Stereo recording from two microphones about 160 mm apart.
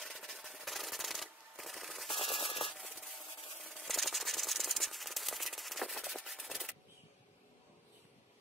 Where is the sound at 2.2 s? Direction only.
35° left (ahead or behind).